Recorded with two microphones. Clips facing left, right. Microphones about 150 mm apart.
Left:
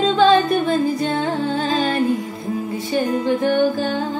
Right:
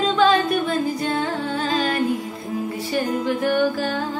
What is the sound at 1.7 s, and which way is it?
Music, 30° left (ahead or behind).